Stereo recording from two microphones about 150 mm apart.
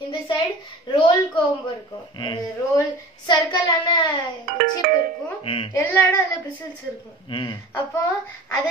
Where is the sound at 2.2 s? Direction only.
30° left (ahead or behind).